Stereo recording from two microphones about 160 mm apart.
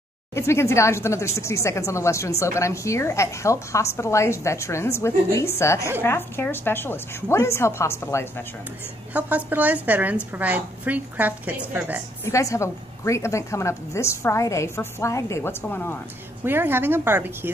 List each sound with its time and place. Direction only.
0.3 s speech: 15° left (ahead or behind)
9.1 s a woman's voice: 10° right (ahead or behind)
12.3 s speech: 20° left (ahead or behind)
16.4 s a woman's voice: 15° right (ahead or behind)